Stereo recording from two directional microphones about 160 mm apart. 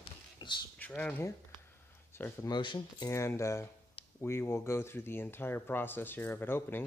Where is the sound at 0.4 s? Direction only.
25° left (ahead or behind).